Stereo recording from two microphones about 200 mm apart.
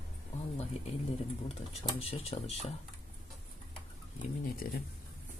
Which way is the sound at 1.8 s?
30° left (ahead or behind).